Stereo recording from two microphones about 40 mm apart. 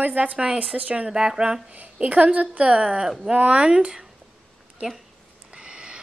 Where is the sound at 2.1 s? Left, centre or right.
Right.